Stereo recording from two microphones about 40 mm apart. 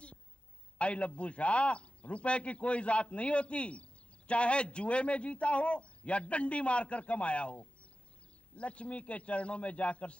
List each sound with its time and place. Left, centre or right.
0.7 s speech: left